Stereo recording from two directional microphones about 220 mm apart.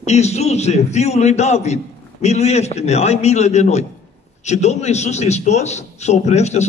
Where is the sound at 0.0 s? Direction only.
30° left (ahead or behind).